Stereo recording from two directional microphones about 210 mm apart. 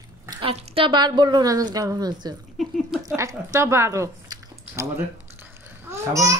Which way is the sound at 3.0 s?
15° right (ahead or behind).